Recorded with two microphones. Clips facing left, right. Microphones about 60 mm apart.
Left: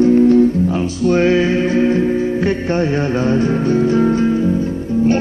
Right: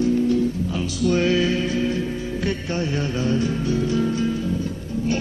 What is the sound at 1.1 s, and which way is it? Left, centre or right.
Mantra, left.